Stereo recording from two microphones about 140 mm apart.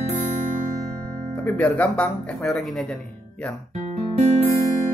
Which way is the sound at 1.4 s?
10° left (ahead or behind).